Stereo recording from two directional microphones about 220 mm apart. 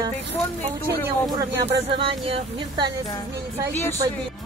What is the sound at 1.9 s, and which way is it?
Speech, 25° right (ahead or behind).